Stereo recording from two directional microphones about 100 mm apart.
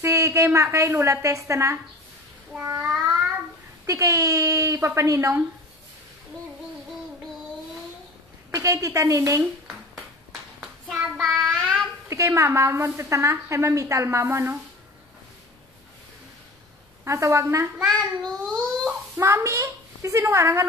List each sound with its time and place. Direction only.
0.0 s a woman's voice: 30° right (ahead or behind)
3.8 s speech: 30° right (ahead or behind)
8.5 s a woman's voice: 30° right (ahead or behind)
10.6 s clapping: 10° right (ahead or behind)
11.2 s child singing: 5° right (ahead or behind)
11.6 s a sound: centre (ahead or behind)
12.1 s a woman's voice: 30° right (ahead or behind)
17.0 s a woman's voice: 30° right (ahead or behind)
17.7 s child singing: 5° left (ahead or behind)
18.9 s a woman's voice: 25° right (ahead or behind)